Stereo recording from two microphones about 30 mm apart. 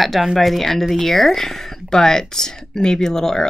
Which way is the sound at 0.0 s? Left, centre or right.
Centre.